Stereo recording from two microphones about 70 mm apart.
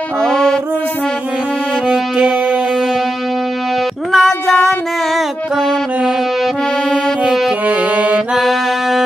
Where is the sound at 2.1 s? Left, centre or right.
Centre.